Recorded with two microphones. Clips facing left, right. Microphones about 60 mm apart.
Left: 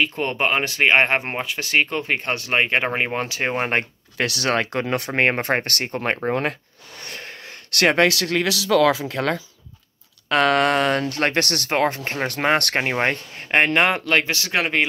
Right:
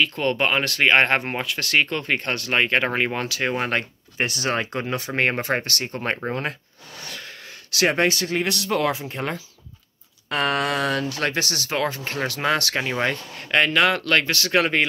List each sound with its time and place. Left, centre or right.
0.0 s speech: centre
3.3 s speech: left
4.2 s speech: left
7.1 s speech: left
10.3 s speech: left
13.7 s speech: left